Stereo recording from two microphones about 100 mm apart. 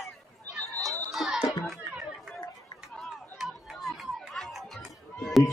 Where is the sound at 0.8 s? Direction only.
Centre (ahead or behind).